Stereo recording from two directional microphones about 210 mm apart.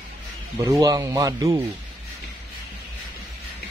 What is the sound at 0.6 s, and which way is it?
Speech, 15° right (ahead or behind).